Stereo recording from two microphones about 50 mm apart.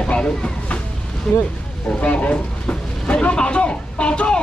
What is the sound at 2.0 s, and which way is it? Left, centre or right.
Speech, left.